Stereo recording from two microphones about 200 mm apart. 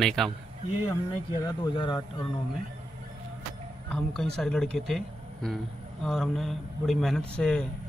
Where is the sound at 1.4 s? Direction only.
20° left (ahead or behind).